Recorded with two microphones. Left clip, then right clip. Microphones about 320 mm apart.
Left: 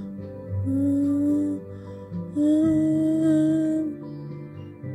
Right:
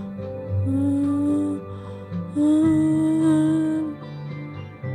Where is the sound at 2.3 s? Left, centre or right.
Centre.